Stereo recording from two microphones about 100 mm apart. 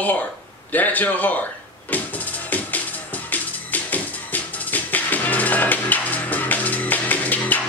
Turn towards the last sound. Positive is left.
turn(degrees=15)  # may be behind; listen again after turning